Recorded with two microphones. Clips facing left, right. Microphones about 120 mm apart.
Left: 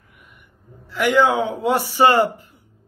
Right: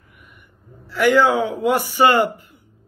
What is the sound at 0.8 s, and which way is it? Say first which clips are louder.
A man's voice: right 1 dB; 15° left (ahead or behind).